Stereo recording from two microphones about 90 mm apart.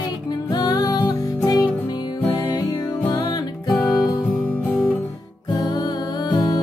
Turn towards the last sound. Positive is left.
turn(degrees=50)  # may be behind; listen again after turning